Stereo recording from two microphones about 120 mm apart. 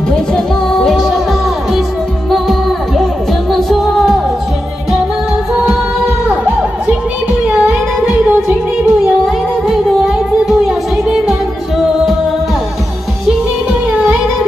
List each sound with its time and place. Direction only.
0.1 s music: 5° left (ahead or behind)
3.5 s music: centre (ahead or behind)
6.2 s music: 10° right (ahead or behind)
8.0 s music: 10° right (ahead or behind)
10.4 s music: centre (ahead or behind)